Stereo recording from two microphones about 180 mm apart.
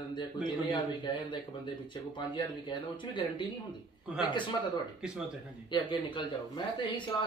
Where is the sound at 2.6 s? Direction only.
25° left (ahead or behind).